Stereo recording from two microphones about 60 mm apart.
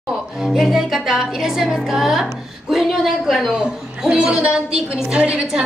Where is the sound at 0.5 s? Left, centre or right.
Centre.